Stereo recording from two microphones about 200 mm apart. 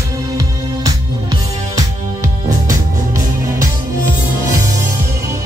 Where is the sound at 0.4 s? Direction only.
15° right (ahead or behind).